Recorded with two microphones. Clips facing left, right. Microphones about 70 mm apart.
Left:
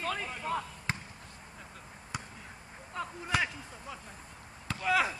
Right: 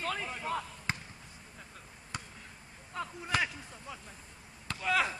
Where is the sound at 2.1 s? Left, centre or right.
Centre.